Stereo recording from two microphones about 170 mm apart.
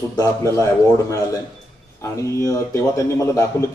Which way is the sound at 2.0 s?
15° left (ahead or behind).